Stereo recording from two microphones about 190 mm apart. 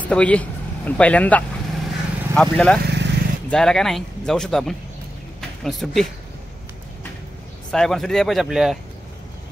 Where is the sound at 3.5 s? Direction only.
5° left (ahead or behind).